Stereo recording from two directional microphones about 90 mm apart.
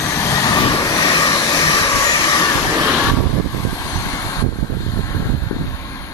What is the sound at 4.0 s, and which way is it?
Vehicle, 40° left (ahead or behind).